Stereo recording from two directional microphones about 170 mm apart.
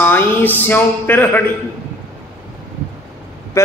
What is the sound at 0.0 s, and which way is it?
Music, 10° left (ahead or behind).